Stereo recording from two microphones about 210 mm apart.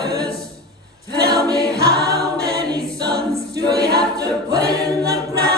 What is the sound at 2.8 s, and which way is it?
A capella, 50° right (ahead or behind).